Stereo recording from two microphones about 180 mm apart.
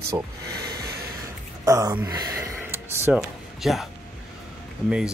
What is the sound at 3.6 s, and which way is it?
Speech, centre (ahead or behind).